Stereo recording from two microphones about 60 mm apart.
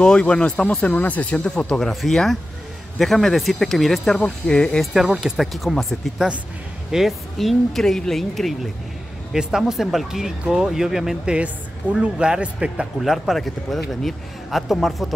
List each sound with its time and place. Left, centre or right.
0.0 s speech: centre
1.6 s speech: centre
4.9 s speech: centre
9.3 s speech: centre
11.3 s speech: right
13.0 s speech: centre